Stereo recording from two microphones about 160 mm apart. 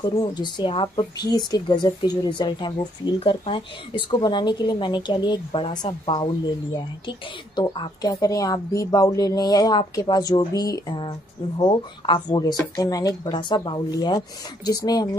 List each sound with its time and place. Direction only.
0.2 s speech: 25° left (ahead or behind)